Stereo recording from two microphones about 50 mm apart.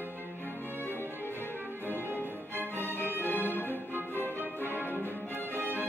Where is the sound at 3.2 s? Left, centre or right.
Left.